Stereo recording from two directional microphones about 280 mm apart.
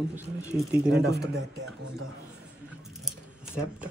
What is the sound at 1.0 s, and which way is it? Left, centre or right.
Speech, right.